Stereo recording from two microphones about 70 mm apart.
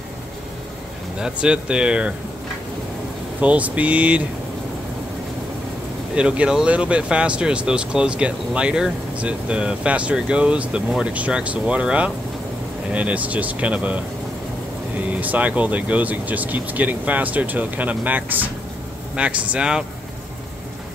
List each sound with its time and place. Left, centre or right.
1.2 s speech: centre
3.3 s speech: right
6.1 s speech: centre
15.1 s speech: right